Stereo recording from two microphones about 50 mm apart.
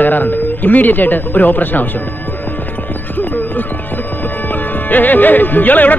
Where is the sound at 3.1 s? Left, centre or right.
Left.